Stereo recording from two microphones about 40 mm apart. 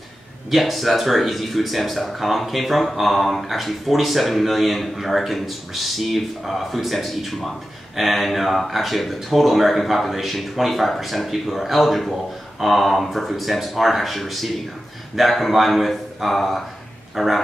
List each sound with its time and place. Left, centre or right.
0.5 s speech: centre